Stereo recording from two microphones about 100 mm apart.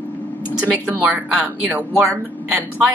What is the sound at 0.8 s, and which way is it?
Speech, 15° right (ahead or behind).